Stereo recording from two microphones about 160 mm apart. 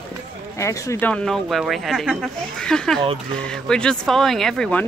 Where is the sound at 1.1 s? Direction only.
5° left (ahead or behind).